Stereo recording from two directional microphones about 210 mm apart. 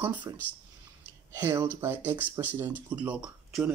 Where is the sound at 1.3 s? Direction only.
10° right (ahead or behind).